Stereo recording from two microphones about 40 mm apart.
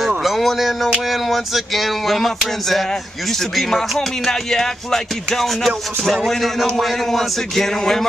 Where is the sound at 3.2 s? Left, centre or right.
Centre.